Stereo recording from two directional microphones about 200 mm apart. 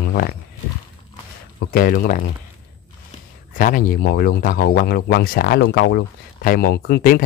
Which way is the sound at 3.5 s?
45° left (ahead or behind).